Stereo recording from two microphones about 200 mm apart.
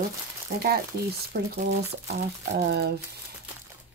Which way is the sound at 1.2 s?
50° right (ahead or behind).